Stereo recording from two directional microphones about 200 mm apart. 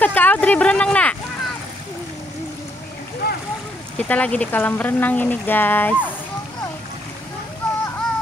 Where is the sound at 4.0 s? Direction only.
5° left (ahead or behind).